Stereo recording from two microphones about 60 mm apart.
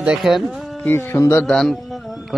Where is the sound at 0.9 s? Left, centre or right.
Left.